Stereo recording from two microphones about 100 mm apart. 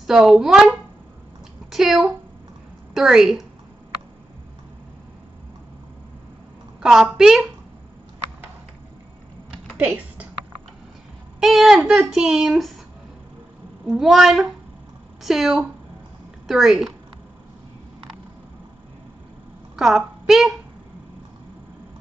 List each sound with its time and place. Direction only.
0.0 s a woman's voice: 5° right (ahead or behind)
6.8 s speech: 5° right (ahead or behind)
9.8 s a sound: 15° right (ahead or behind)
11.3 s speech: centre (ahead or behind)
13.8 s speech: 5° right (ahead or behind)
19.7 s a woman's voice: 5° right (ahead or behind)